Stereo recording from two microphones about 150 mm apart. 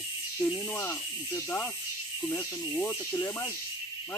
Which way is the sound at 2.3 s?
15° left (ahead or behind).